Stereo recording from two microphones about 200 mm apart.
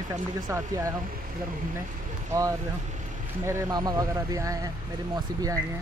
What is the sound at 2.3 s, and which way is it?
Speech, 15° right (ahead or behind).